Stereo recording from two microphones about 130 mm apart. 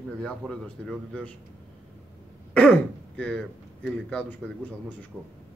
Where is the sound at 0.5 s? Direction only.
5° left (ahead or behind).